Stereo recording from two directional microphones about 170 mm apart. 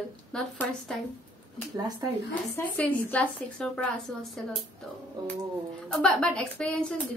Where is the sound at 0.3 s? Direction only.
5° left (ahead or behind).